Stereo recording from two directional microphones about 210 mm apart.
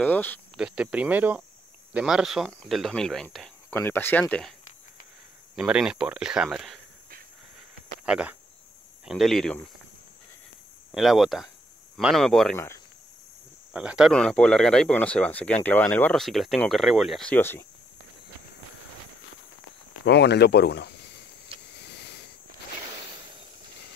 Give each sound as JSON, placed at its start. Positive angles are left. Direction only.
{"t": 0.0, "sound": "speech", "side_deg": 10}
{"t": 0.6, "sound": "speech", "side_deg": -5}
{"t": 5.6, "sound": "speech", "side_deg": -5}
{"t": 8.0, "sound": "speech", "side_deg": -5}
{"t": 10.9, "sound": "speech", "side_deg": 0}
{"t": 12.5, "sound": "speech", "side_deg": 10}
{"t": 13.7, "sound": "speech", "side_deg": -5}
{"t": 20.1, "sound": "speech", "side_deg": 55}